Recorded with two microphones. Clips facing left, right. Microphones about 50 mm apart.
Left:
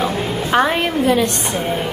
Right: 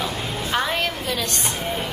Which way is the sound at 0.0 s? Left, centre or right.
Left.